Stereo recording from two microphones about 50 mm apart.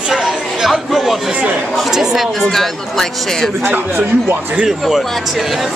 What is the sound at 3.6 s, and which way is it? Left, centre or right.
Speech, right.